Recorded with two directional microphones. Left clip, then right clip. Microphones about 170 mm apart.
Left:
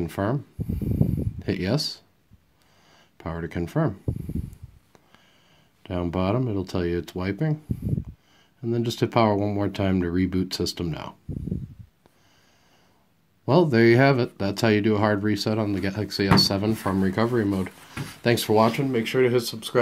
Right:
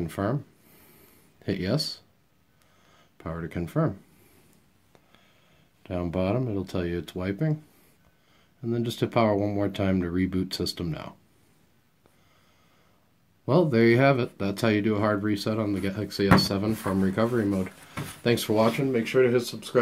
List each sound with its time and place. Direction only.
0.0 s speech: 25° left (ahead or behind)
5.8 s speech: 30° left (ahead or behind)
8.5 s speech: 30° left (ahead or behind)
13.5 s speech: 30° left (ahead or behind); by 19.8 s 50° left (ahead or behind)